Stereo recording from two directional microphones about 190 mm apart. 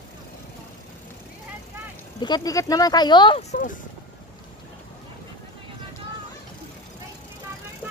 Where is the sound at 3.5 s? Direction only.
45° left (ahead or behind).